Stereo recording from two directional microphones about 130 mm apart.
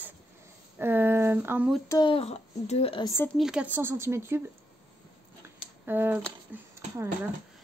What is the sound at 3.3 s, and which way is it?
Speech, 5° right (ahead or behind).